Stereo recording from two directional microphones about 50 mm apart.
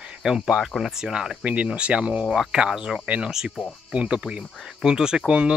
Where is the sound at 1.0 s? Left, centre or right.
Centre.